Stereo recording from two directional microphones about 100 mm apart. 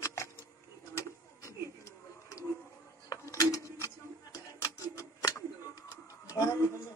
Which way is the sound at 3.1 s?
35° left (ahead or behind).